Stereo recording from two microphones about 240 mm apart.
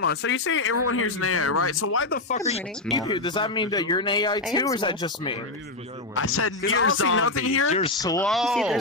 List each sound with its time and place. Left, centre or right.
0.0 s speech: left
2.0 s speech: left
2.9 s speech: centre
6.1 s speech: left
7.7 s speech: left
8.3 s speech: centre